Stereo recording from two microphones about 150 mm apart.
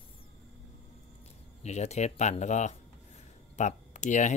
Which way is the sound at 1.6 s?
50° left (ahead or behind).